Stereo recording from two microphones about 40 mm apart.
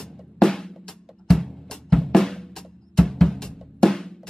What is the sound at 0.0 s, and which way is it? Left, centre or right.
Music, centre.